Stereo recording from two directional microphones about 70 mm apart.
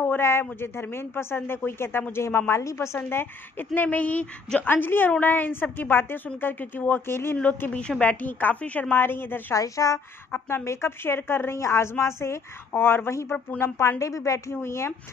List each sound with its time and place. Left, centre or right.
0.0 s a woman's voice: left
3.0 s a woman's voice: left
8.0 s a woman's voice: left
8.9 s a woman's voice: left
9.5 s speech: left
10.3 s a woman's voice: left